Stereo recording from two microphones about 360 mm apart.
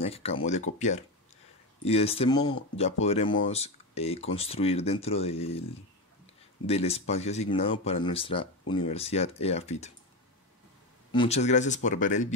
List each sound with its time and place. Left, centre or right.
0.0 s speech: centre
6.6 s speech: centre
11.1 s speech: centre